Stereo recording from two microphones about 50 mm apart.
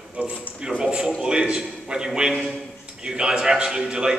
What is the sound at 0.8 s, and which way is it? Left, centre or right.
A man's voice, centre.